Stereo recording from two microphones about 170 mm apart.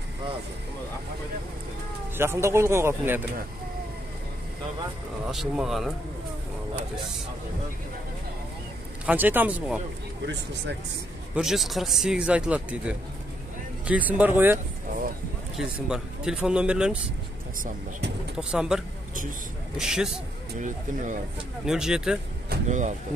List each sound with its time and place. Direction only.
2.1 s speech: 15° right (ahead or behind)
5.3 s speech: centre (ahead or behind)
9.0 s speech: 10° right (ahead or behind)
10.2 s speech: 90° right
11.3 s speech: centre (ahead or behind)
18.4 s speech: 5° right (ahead or behind)
19.8 s speech: 5° right (ahead or behind)
20.5 s speech: 50° right (ahead or behind)
21.6 s speech: 5° right (ahead or behind)
22.7 s speech: 45° right (ahead or behind)